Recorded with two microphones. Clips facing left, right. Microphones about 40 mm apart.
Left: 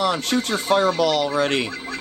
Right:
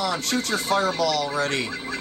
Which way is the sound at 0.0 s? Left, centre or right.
Left.